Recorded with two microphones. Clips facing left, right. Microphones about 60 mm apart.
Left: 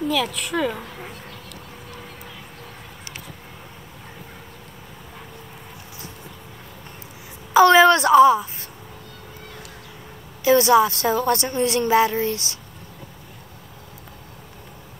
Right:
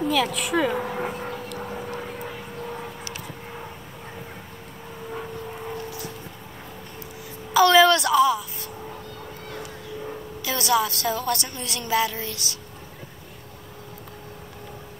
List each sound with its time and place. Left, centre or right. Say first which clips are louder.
0.1 s a woman's voice: right 1 dB; centre
1.0 s dog: right 8 dB; right
7.5 s a sound: left 3 dB; left
10.4 s a woman's voice: left 8 dB; left